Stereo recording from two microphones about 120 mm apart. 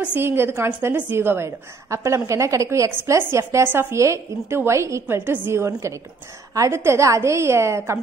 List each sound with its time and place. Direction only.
0.0 s a woman's voice: 20° right (ahead or behind)